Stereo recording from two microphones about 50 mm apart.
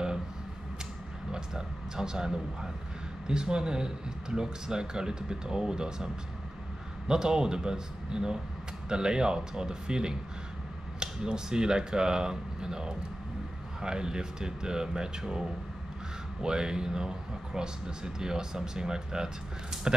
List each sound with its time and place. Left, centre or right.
1.3 s speech: centre
7.1 s speech: centre
16.4 s speech: centre